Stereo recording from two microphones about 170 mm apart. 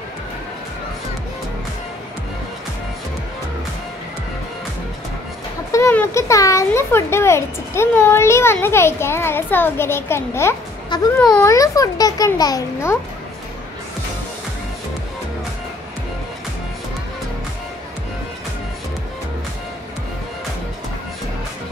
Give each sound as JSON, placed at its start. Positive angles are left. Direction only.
{"t": 5.7, "sound": "a child's voice", "side_deg": 15}
{"t": 11.4, "sound": "a child's voice", "side_deg": 20}